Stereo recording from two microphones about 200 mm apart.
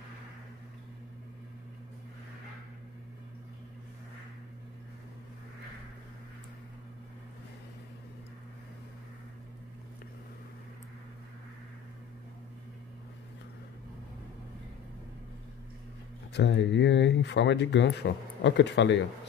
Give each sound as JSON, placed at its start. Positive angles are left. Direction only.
{"t": 16.3, "sound": "speech", "side_deg": 60}